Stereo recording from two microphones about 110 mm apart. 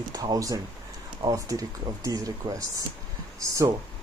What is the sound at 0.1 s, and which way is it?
Speech, 35° right (ahead or behind).